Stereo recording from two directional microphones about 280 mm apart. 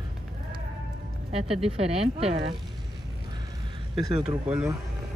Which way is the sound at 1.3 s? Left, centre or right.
Right.